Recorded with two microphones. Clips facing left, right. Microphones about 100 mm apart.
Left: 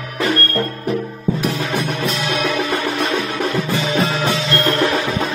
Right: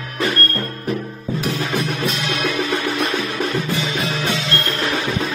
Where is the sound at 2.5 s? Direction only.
90° left.